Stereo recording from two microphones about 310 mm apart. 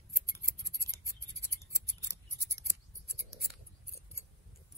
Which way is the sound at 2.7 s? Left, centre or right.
Centre.